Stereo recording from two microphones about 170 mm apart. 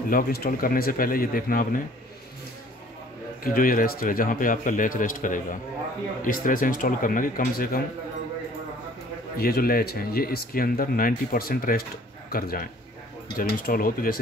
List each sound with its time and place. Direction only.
0.1 s speech: 60° left (ahead or behind)
3.4 s speech: 55° left (ahead or behind)
9.4 s speech: 60° left (ahead or behind)